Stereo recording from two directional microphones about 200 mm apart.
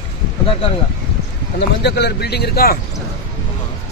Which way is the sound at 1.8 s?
55° left (ahead or behind).